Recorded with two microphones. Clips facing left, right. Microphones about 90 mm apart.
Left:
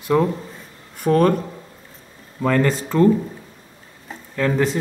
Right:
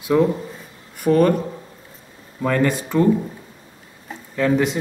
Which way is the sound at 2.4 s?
5° right (ahead or behind).